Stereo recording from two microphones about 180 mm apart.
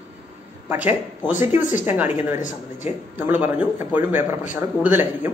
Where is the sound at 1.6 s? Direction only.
45° left (ahead or behind).